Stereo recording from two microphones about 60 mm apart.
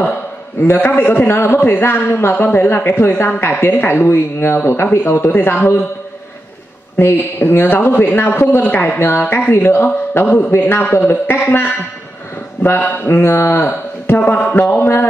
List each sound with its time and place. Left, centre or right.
0.8 s a man's voice: left
7.0 s a man's voice: left
13.6 s speech: left